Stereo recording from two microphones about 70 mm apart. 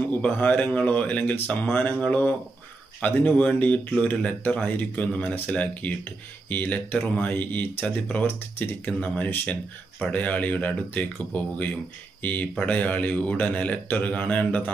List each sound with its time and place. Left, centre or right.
0.1 s speech: left